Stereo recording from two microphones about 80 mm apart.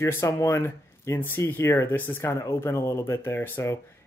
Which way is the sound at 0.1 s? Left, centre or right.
Left.